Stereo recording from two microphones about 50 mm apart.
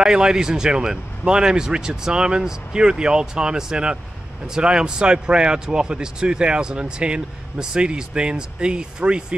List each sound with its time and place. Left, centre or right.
0.0 s speech: centre